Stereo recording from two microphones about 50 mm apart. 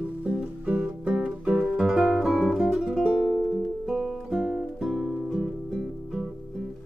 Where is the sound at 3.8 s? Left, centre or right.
Centre.